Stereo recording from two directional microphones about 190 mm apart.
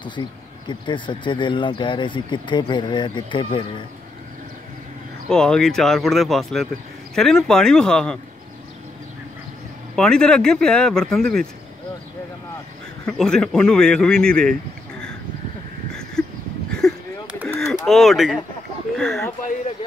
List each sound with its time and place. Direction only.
0.0 s speech: 25° left (ahead or behind)
5.3 s speech: 5° left (ahead or behind)
9.9 s speech: 5° left (ahead or behind)
13.0 s speech: 5° left (ahead or behind)
16.7 s a sound: centre (ahead or behind)
17.5 s bird: centre (ahead or behind)